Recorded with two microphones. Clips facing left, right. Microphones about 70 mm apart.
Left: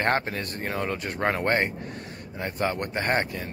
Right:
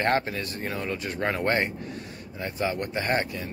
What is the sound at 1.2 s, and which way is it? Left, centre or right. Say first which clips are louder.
Speech: left 1 dB; left.